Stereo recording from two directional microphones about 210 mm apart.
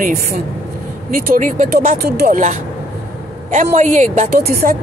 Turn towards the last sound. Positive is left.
turn(degrees=-45)  # may be behind; listen again after turning